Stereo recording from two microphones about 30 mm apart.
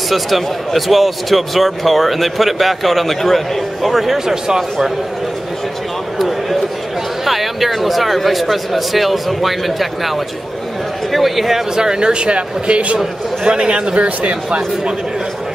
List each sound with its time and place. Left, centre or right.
0.1 s speech: centre
3.9 s speech: centre
4.3 s speech: centre
6.1 s a sound: centre
7.2 s speech: centre
11.7 s speech: right
13.9 s speech: right